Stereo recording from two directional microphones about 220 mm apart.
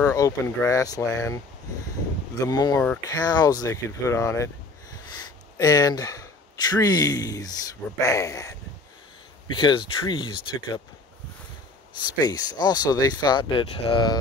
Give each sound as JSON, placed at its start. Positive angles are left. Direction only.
{"t": 0.0, "sound": "speech", "side_deg": 15}
{"t": 2.4, "sound": "speech", "side_deg": 15}
{"t": 5.6, "sound": "speech", "side_deg": 15}
{"t": 12.2, "sound": "speech", "side_deg": 20}